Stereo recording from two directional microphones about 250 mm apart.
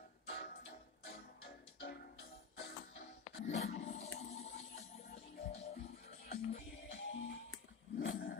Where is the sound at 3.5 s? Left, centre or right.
Left.